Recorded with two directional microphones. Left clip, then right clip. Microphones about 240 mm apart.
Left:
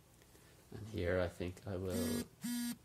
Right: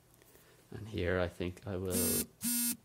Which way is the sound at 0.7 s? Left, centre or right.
Right.